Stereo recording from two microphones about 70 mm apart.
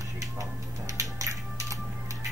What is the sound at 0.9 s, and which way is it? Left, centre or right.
Music, right.